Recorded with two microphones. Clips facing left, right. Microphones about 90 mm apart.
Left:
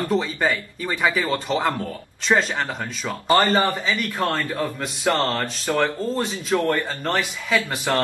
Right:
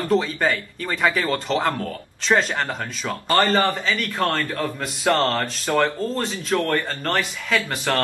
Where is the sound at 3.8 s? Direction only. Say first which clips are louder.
Right 1 dB; 5° left (ahead or behind).